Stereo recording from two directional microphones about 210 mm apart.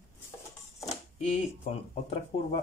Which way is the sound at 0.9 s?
30° left (ahead or behind).